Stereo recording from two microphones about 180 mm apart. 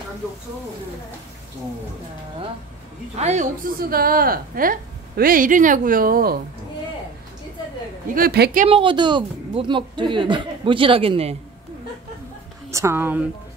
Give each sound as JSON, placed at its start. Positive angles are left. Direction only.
{"t": 3.2, "sound": "a woman's voice", "side_deg": -40}
{"t": 3.8, "sound": "speech", "side_deg": -55}
{"t": 8.1, "sound": "a woman's voice", "side_deg": -60}
{"t": 8.6, "sound": "speech", "side_deg": -30}
{"t": 12.7, "sound": "speech", "side_deg": -15}